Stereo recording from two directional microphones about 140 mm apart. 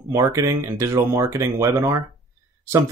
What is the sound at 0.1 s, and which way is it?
Speech, 20° right (ahead or behind).